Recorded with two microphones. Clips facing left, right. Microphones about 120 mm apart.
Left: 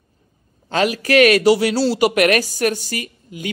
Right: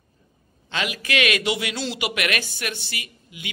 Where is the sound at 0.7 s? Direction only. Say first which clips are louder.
Left 10 dB; 40° left (ahead or behind).